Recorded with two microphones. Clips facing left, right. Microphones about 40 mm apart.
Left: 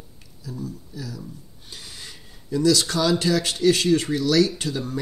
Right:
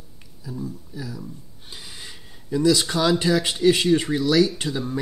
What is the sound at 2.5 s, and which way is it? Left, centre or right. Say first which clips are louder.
Speech: even; centre.